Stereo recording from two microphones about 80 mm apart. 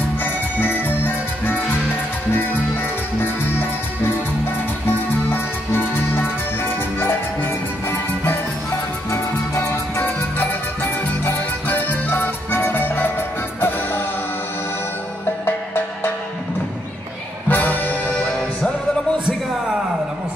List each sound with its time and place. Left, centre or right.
0.2 s music: left
4.9 s music: left
10.4 s music: left
15.4 s music: left
17.5 s music: left
18.1 s music: centre